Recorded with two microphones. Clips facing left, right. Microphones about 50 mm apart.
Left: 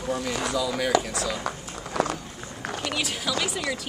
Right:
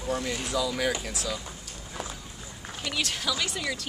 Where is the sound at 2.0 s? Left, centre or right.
Left.